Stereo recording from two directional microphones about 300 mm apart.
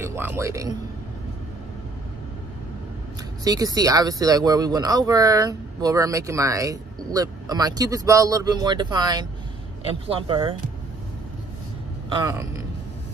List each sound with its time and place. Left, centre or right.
0.0 s a man's voice: centre
3.4 s speech: centre
12.1 s speech: centre